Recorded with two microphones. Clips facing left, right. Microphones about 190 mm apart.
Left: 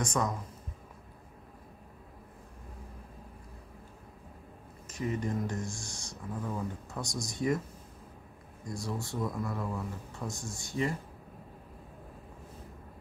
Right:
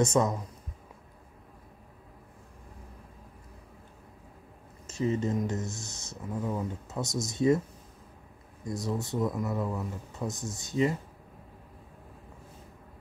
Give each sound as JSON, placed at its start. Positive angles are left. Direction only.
{"t": 0.0, "sound": "speech", "side_deg": -25}
{"t": 4.8, "sound": "speech", "side_deg": -25}
{"t": 8.6, "sound": "speech", "side_deg": -20}